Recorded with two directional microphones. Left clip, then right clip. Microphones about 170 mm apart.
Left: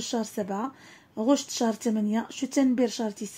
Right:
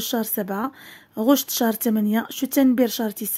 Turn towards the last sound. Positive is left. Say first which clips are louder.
# right 5 dB
turn(degrees=-45)  # may be behind; listen again after turning